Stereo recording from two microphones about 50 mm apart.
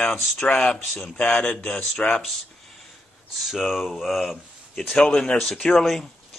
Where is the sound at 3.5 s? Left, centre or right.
Centre.